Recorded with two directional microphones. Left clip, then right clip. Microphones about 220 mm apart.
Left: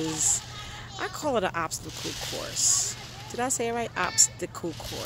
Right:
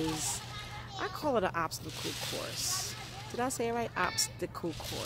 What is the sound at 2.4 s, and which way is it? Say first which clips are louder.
Speech: left 8 dB; 10° left (ahead or behind).